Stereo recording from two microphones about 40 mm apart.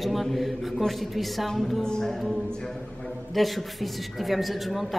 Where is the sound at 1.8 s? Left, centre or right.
Centre.